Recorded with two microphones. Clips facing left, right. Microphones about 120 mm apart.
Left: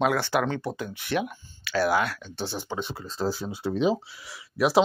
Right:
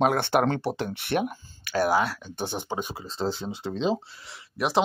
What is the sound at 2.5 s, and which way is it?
Speech, 15° right (ahead or behind).